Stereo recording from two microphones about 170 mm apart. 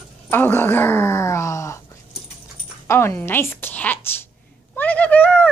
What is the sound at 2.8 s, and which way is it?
A woman's voice, 15° left (ahead or behind).